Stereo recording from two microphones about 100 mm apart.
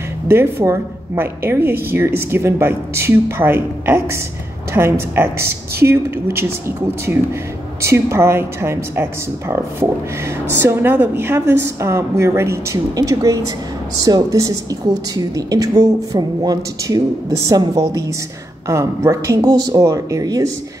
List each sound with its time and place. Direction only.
0.3 s a woman's voice: 25° right (ahead or behind)
7.8 s a woman's voice: 30° right (ahead or behind)